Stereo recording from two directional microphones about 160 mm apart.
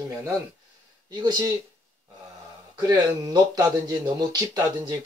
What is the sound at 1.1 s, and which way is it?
Speech, 25° right (ahead or behind).